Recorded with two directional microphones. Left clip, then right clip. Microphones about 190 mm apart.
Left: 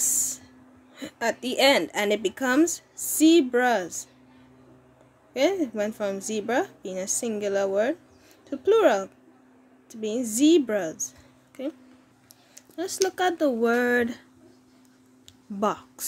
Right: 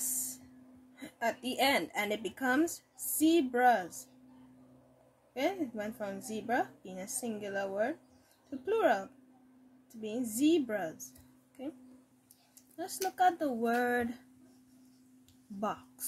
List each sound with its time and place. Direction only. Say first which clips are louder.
0.9 s a woman's voice: left 7 dB; 55° left (ahead or behind)
5.3 s speech: left 10 dB; 55° left (ahead or behind)
12.7 s a woman's voice: left 8 dB; 55° left (ahead or behind)
15.6 s a woman's voice: left 11 dB; 55° left (ahead or behind)